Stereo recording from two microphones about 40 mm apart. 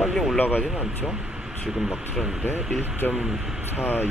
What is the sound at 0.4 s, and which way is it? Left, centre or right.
Speech, left.